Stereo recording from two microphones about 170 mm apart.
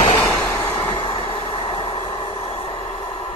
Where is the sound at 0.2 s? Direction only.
20° left (ahead or behind).